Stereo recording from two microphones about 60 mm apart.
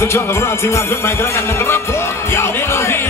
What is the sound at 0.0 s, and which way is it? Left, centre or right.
Music, left.